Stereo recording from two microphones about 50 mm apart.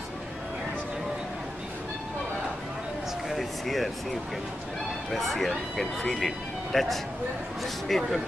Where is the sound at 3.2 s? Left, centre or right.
Centre.